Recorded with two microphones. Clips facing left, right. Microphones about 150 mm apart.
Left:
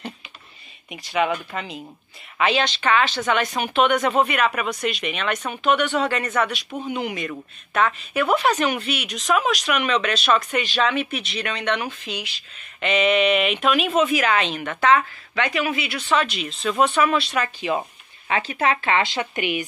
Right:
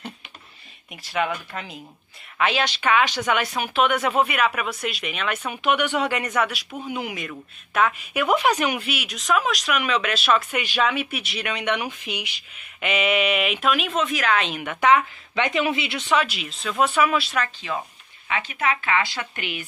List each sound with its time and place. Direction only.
0.8 s a woman's voice: centre (ahead or behind); by 16.2 s 20° right (ahead or behind)
16.2 s speech: 5° right (ahead or behind)
17.7 s speech: 20° left (ahead or behind)
18.3 s speech: 35° left (ahead or behind)
19.0 s speech: 20° left (ahead or behind)